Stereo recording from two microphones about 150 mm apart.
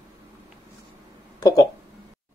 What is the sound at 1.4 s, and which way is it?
Speech, 25° left (ahead or behind).